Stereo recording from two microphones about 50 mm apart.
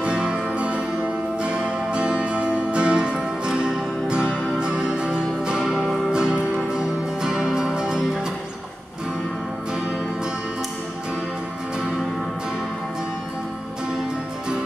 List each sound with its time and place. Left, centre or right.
0.0 s music: centre
5.7 s music: centre
6.1 s music: centre